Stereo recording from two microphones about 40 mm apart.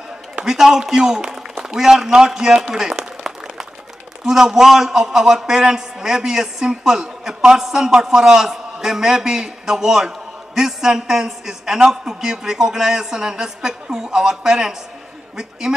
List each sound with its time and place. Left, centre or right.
0.5 s a man's voice: centre
4.2 s a man's voice: centre